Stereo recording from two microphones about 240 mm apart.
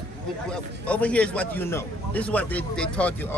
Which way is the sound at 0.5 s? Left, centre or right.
Centre.